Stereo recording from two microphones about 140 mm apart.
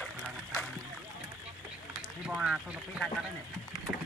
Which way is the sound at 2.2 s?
5° right (ahead or behind).